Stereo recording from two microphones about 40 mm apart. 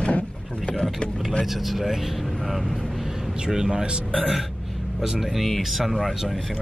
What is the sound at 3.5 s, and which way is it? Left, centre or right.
Speech, centre.